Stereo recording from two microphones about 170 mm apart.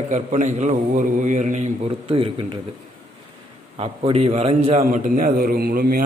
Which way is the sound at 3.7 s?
35° right (ahead or behind).